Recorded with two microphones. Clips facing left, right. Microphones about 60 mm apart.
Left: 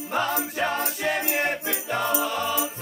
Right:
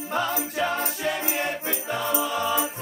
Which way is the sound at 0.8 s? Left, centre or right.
Left.